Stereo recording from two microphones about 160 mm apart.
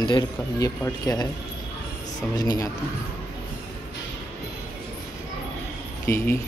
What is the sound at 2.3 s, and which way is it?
Speech, 25° left (ahead or behind).